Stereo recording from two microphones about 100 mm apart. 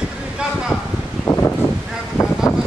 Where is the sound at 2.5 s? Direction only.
35° left (ahead or behind).